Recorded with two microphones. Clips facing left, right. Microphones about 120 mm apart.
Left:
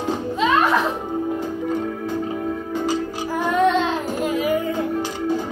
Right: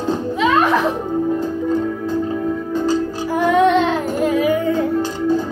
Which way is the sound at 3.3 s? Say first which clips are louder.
Right 4 dB; 85° right.